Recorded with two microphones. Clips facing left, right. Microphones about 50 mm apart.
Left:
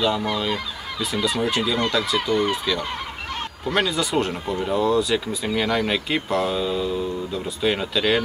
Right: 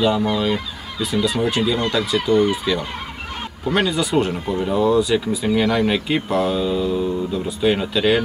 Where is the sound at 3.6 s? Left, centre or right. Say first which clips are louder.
Right 3 dB; centre.